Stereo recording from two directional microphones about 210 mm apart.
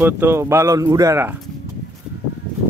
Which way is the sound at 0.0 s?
10° right (ahead or behind).